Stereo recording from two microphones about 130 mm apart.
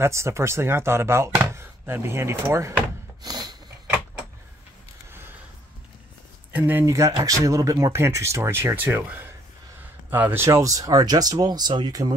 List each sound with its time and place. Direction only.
0.0 s speech: 20° right (ahead or behind)
3.2 s a sound: 30° right (ahead or behind)
6.5 s speech: 15° right (ahead or behind); by 12.1 s 30° right (ahead or behind)